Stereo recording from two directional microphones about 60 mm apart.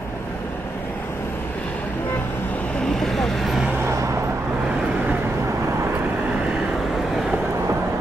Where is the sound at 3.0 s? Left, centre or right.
Centre.